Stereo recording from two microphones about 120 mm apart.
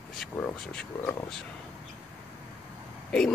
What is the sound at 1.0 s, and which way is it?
Speech, 25° left (ahead or behind).